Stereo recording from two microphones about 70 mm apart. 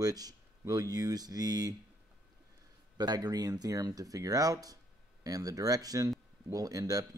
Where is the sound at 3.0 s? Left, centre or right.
Right.